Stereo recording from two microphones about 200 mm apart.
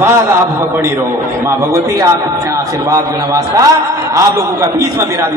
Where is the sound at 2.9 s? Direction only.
15° right (ahead or behind).